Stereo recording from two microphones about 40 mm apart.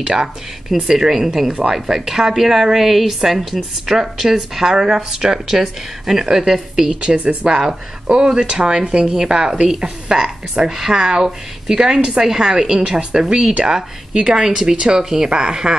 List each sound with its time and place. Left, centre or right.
0.1 s a woman's voice: centre